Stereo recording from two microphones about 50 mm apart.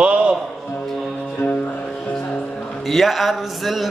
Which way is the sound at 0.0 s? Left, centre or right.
Right.